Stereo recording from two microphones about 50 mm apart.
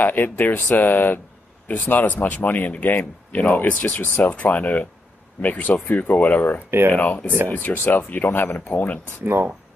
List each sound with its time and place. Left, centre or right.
0.0 s speech: left
9.2 s speech: right